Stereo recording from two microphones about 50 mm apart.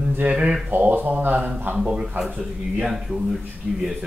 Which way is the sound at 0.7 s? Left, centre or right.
Right.